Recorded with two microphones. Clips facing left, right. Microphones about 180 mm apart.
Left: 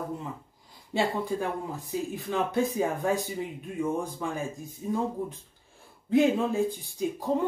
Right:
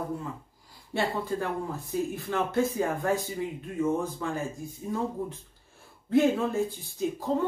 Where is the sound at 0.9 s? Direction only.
15° left (ahead or behind).